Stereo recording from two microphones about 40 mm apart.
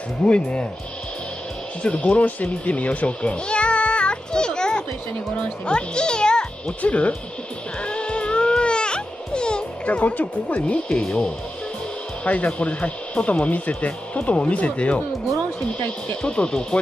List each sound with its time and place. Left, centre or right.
0.2 s speech: left
1.8 s speech: left
2.2 s music: left; by 4.8 s centre
5.7 s a child's voice: left
6.8 s speech: left
7.8 s music: left
9.8 s speech: left
12.3 s speech: left
16.2 s speech: left